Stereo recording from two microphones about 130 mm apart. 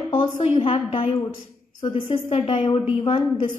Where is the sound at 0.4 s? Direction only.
45° left (ahead or behind).